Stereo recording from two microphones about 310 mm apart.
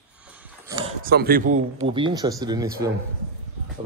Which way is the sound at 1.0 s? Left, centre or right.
Right.